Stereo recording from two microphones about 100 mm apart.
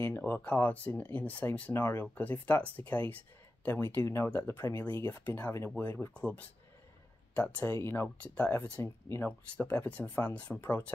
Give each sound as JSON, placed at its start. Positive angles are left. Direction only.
{"t": 0.0, "sound": "speech", "side_deg": 20}